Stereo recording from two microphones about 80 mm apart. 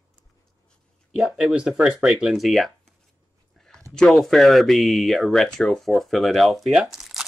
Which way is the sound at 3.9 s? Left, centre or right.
Centre.